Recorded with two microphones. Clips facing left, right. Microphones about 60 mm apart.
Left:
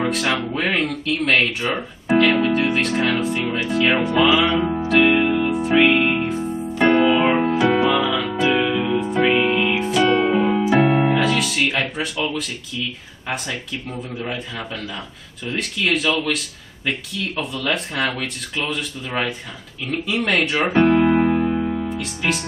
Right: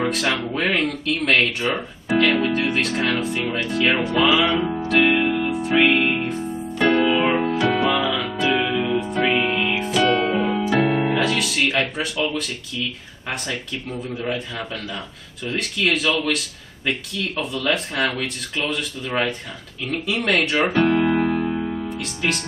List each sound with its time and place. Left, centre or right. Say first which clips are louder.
0.0 s speech: left 1 dB; centre
3.8 s music: left 2 dB; centre
6.8 s music: left 2 dB; centre
13.3 s speech: left 1 dB; centre
20.7 s music: left 6 dB; centre